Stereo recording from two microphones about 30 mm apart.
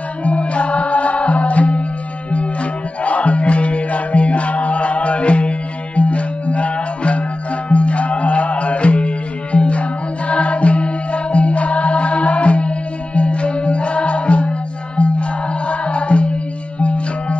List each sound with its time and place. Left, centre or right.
0.2 s music: left
3.0 s music: left
15.7 s music: left